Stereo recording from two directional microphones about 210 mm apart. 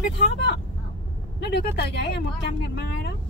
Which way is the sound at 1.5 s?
55° left (ahead or behind).